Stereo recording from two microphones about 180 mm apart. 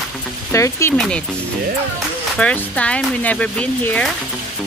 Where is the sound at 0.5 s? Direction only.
15° left (ahead or behind).